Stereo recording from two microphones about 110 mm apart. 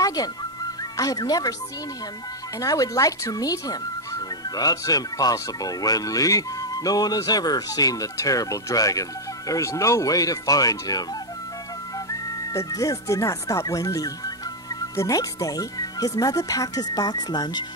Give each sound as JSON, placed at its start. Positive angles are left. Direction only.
{"t": 0.0, "sound": "music", "side_deg": 35}
{"t": 0.9, "sound": "speech", "side_deg": 35}
{"t": 2.6, "sound": "speech", "side_deg": 35}
{"t": 12.1, "sound": "speech", "side_deg": 30}